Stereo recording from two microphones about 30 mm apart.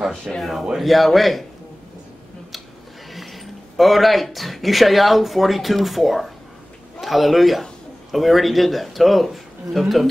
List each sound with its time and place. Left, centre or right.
0.3 s speech: right
0.7 s a man's voice: centre
3.1 s a man's voice: centre